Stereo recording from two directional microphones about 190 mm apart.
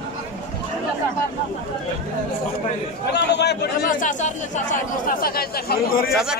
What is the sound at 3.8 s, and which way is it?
Speech, 45° left (ahead or behind).